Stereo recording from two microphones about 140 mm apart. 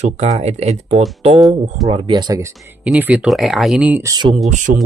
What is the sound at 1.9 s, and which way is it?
Speech, 35° right (ahead or behind).